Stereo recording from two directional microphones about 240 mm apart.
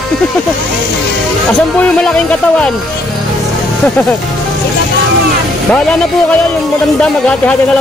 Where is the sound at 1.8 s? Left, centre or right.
Centre.